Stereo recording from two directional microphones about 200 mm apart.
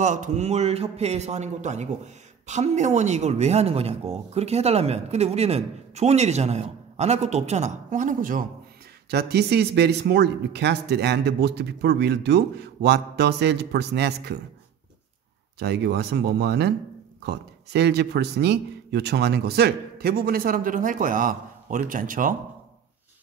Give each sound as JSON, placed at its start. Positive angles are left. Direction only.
{"t": 0.0, "sound": "speech", "side_deg": -40}
{"t": 9.1, "sound": "speech", "side_deg": -55}
{"t": 15.6, "sound": "a man's voice", "side_deg": -55}